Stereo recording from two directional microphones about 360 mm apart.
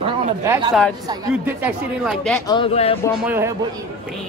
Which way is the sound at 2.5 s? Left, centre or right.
Centre.